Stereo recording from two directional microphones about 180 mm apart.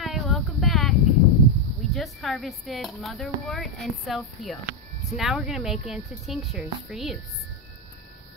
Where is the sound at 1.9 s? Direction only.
Centre (ahead or behind).